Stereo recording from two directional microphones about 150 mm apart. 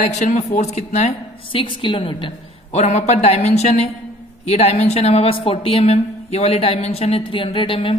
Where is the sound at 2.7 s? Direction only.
50° left (ahead or behind).